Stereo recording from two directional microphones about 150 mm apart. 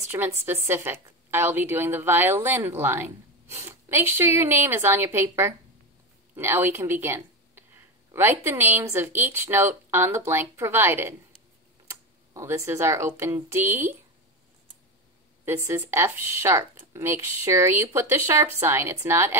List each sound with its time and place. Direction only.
0.1 s a woman's voice: 20° right (ahead or behind)
15.4 s a woman's voice: 15° right (ahead or behind)